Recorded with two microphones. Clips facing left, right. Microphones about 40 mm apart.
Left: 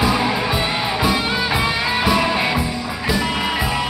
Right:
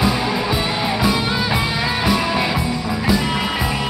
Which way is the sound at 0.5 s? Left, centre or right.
Left.